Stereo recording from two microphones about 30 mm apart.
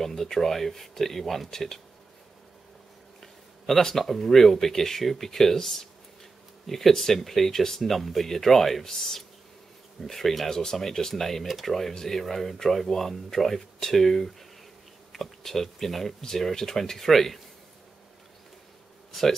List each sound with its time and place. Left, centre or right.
0.0 s speech: centre
1.5 s speech: centre
3.2 s a sound: centre
4.0 s speech: centre
11.4 s speech: centre
12.1 s speech: centre